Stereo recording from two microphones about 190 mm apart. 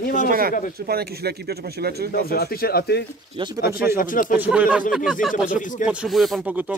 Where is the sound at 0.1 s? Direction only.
45° right (ahead or behind).